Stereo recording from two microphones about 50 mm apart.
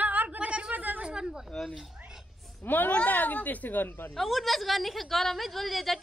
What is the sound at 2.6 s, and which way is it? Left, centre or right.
Speech, left.